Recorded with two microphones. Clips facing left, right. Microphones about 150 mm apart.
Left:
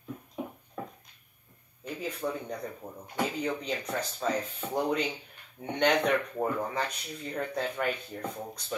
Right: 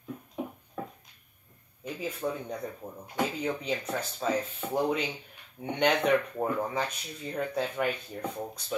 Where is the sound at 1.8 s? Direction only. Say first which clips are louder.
Right 1 dB; 10° right (ahead or behind).